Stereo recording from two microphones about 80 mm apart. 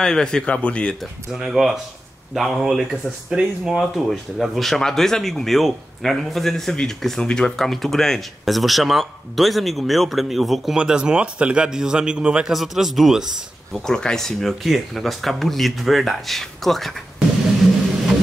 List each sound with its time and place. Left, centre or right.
0.0 s speech: centre
1.3 s a man's voice: centre
13.8 s speech: centre